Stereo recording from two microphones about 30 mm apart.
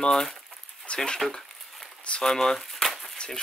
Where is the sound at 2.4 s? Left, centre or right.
Centre.